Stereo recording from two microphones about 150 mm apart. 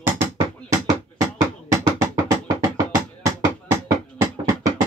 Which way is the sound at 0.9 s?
25° right (ahead or behind).